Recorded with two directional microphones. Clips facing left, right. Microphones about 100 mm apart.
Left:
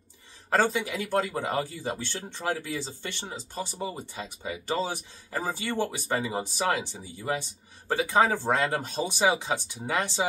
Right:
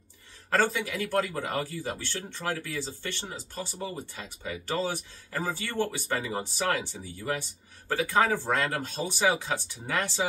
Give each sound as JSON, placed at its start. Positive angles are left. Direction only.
{"t": 0.5, "sound": "speech", "side_deg": 20}